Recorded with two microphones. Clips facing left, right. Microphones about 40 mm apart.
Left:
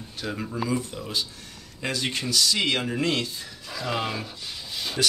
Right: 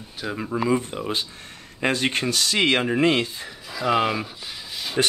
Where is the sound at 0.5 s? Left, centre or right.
Right.